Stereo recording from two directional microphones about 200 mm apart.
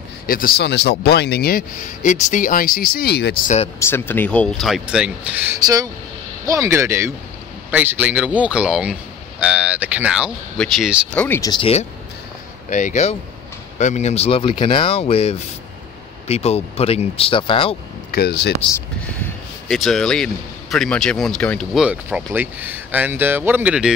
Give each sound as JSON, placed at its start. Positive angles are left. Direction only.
{"t": 0.3, "sound": "speech", "side_deg": 45}
{"t": 3.4, "sound": "speech", "side_deg": 30}
{"t": 3.8, "sound": "speech", "side_deg": 10}
{"t": 11.2, "sound": "speech", "side_deg": 10}
{"t": 12.6, "sound": "speech", "side_deg": 40}
{"t": 18.1, "sound": "speech", "side_deg": 55}
{"t": 19.7, "sound": "speech", "side_deg": 0}
{"t": 21.8, "sound": "speech", "side_deg": -5}